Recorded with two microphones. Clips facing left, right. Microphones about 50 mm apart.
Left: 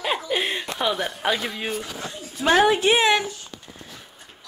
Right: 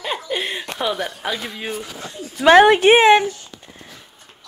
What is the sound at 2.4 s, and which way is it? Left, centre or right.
Speech, right.